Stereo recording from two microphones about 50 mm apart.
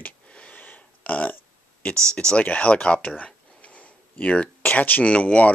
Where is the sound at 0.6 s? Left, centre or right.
Left.